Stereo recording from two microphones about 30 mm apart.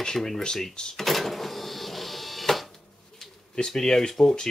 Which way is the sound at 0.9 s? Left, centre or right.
Centre.